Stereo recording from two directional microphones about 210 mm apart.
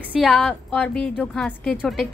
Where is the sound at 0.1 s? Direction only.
Centre (ahead or behind).